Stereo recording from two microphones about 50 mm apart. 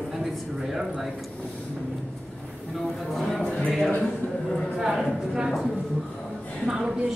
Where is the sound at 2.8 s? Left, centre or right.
Centre.